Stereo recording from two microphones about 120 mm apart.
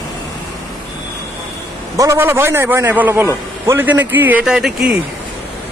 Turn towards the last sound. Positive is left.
turn(degrees=-5)  # may be behind; listen again after turning